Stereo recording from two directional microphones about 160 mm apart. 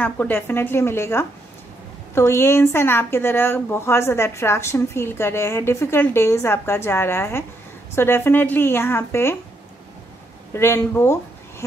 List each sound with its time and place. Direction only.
0.0 s speech: 10° left (ahead or behind)
10.5 s speech: 15° left (ahead or behind)